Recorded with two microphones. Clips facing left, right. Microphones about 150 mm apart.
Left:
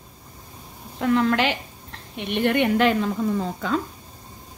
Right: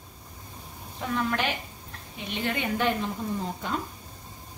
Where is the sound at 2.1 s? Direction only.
65° left (ahead or behind); by 3.8 s 90° left.